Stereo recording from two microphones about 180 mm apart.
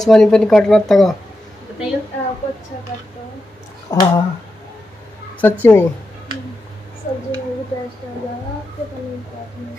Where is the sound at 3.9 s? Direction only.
20° left (ahead or behind).